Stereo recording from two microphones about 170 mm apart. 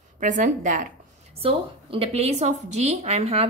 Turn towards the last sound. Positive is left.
turn(degrees=-40)  # may be behind; listen again after turning